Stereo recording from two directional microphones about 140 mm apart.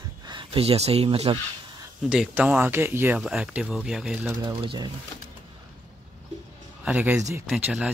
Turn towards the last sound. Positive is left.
turn(degrees=-10)  # may be behind; listen again after turning